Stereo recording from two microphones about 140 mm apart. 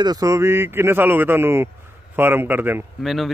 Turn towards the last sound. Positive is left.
turn(degrees=0)  # may be behind; listen again after turning